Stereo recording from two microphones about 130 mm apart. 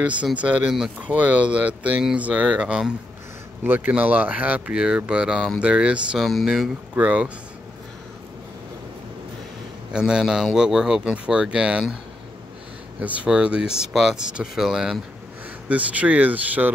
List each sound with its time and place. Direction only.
0.0 s speech: 10° right (ahead or behind)
9.9 s a man's voice: 5° right (ahead or behind)
13.0 s a man's voice: 10° right (ahead or behind)